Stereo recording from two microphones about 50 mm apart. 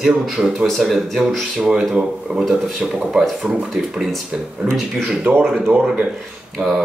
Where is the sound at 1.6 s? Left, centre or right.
Centre.